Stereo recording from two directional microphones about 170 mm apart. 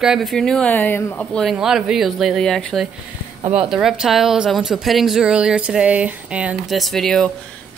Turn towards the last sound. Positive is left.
turn(degrees=0)  # may be behind; listen again after turning